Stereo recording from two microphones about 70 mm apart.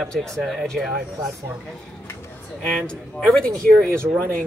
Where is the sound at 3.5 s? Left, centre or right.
Right.